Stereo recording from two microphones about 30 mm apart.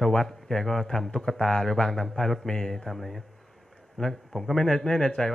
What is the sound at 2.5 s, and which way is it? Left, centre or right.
Speech, left.